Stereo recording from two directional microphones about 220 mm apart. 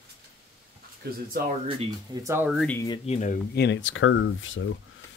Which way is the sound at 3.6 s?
55° left (ahead or behind).